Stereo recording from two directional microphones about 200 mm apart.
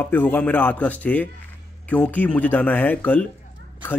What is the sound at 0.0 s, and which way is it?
A man's voice, 10° left (ahead or behind).